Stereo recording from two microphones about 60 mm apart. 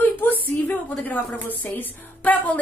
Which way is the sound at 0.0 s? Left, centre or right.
Left.